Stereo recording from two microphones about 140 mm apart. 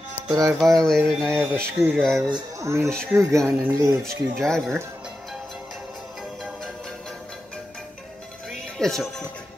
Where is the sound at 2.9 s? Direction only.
5° left (ahead or behind).